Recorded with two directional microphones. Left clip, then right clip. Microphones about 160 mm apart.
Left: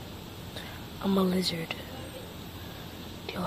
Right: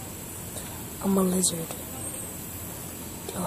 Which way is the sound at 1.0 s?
5° left (ahead or behind).